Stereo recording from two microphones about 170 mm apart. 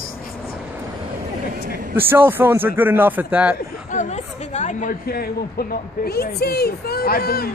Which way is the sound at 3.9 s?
40° left (ahead or behind).